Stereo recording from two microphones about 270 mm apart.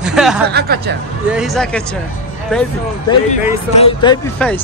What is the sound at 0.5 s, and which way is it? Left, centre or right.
Speech, right.